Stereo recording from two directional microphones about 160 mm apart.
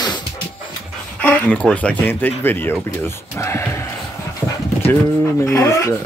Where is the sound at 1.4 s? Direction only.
5° left (ahead or behind).